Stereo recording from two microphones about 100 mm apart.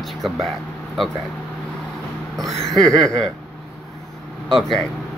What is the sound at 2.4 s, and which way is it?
Speech, 5° left (ahead or behind).